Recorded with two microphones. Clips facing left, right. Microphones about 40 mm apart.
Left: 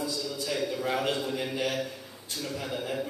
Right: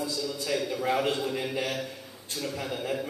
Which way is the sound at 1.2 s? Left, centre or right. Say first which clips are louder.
Right 1 dB; centre.